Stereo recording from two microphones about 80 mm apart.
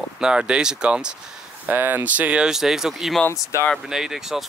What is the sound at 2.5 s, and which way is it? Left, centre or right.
Speech, centre.